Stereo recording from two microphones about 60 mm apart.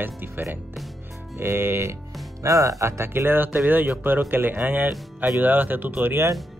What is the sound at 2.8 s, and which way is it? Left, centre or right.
Speech, right.